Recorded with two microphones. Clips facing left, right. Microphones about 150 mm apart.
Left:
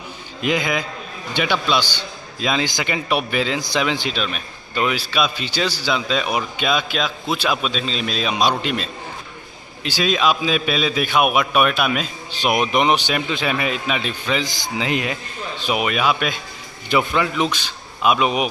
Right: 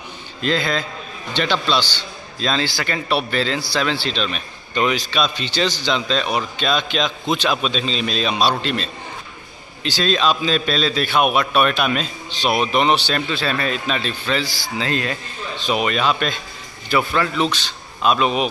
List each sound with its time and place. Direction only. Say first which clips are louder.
0.4 s a man's voice: even; 15° left (ahead or behind)